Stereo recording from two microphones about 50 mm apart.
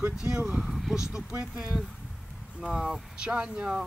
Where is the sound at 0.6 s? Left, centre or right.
Centre.